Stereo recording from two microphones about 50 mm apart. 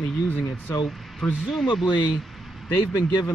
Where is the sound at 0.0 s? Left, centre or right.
Centre.